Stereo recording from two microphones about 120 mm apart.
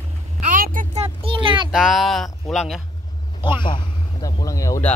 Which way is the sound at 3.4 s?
40° left (ahead or behind).